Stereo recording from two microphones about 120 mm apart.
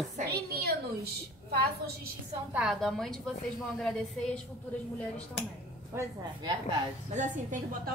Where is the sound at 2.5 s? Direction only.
5° right (ahead or behind).